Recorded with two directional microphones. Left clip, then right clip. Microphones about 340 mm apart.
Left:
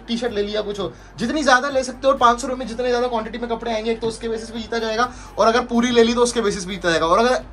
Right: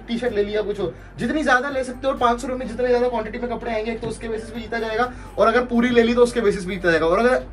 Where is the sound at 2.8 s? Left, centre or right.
Left.